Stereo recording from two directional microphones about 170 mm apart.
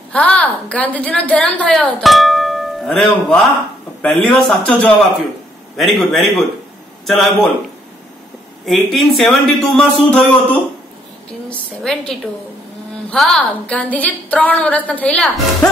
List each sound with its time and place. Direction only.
0.1 s a woman's voice: 5° left (ahead or behind)
8.6 s a man's voice: centre (ahead or behind)